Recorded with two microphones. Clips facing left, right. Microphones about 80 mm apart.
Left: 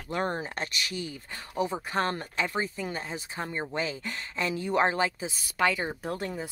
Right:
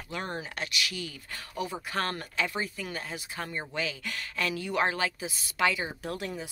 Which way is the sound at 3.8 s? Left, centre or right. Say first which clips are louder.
Even; left.